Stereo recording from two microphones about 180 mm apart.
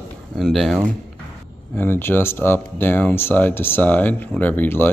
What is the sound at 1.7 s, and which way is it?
Speech, 10° left (ahead or behind).